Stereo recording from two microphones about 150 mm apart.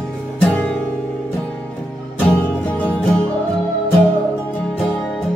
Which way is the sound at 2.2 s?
10° left (ahead or behind).